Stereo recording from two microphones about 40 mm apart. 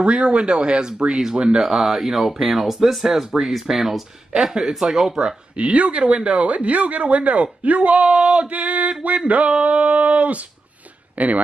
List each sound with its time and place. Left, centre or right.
0.0 s speech: right
5.6 s speech: right